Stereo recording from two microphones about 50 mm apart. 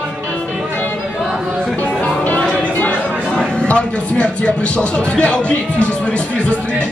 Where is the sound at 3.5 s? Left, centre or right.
Centre.